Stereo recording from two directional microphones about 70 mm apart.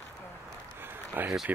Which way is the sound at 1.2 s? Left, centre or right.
Right.